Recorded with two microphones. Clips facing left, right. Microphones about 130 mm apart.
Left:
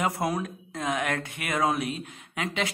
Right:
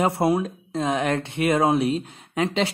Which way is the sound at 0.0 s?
30° right (ahead or behind).